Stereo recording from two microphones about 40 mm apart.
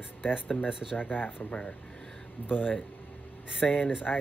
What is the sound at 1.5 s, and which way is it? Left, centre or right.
Speech, left.